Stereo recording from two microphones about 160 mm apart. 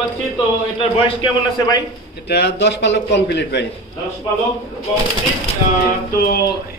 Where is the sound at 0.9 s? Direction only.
30° left (ahead or behind).